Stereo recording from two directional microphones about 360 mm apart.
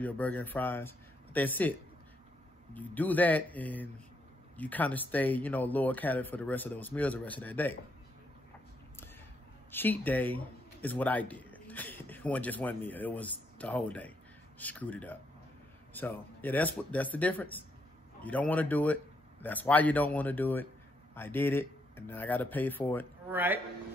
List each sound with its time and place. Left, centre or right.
0.0 s speech: centre
9.7 s speech: centre
23.3 s speech: centre